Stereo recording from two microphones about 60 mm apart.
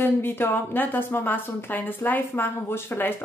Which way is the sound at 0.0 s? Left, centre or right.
Left.